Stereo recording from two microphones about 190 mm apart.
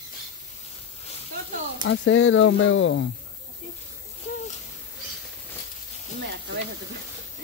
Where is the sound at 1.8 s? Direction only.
90° left; by 3.1 s 75° left (ahead or behind).